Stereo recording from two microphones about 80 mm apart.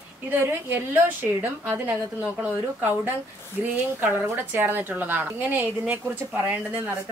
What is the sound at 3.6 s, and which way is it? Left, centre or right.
A woman's voice, centre.